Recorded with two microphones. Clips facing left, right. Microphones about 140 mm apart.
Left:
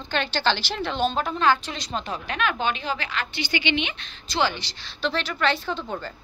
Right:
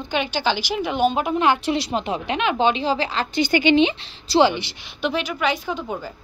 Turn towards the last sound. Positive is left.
turn(degrees=-10)  # may be behind; listen again after turning